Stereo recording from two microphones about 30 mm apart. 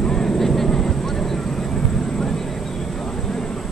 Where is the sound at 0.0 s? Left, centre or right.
Centre.